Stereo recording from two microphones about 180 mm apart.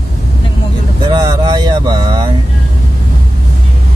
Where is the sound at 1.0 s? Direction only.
20° right (ahead or behind).